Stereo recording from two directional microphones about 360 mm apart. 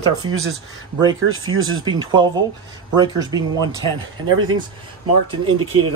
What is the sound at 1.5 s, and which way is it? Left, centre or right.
Speech, right.